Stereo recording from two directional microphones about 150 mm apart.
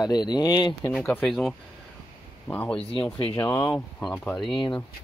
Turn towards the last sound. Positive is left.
turn(degrees=30)  # may be behind; listen again after turning